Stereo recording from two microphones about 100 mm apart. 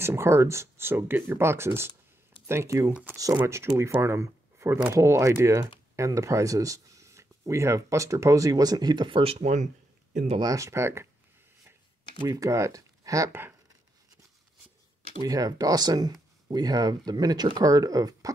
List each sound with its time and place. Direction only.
0.0 s speech: 25° right (ahead or behind)
2.9 s speech: 10° right (ahead or behind)
3.4 s speech: 30° right (ahead or behind); by 9.2 s 50° right (ahead or behind)
9.2 s speech: 80° right
10.4 s speech: 35° right (ahead or behind)
12.3 s speech: 35° right (ahead or behind)
13.3 s speech: 20° right (ahead or behind)
15.2 s speech: 35° right (ahead or behind)